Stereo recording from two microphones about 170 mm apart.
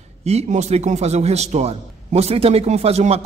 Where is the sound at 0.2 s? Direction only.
40° right (ahead or behind).